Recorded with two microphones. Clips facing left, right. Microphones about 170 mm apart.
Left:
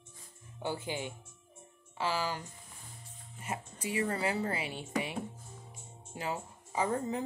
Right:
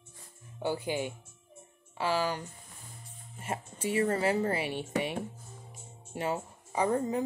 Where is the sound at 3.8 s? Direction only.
25° right (ahead or behind).